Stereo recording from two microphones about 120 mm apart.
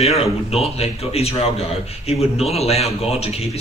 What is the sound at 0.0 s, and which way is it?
A man's voice, 60° left (ahead or behind).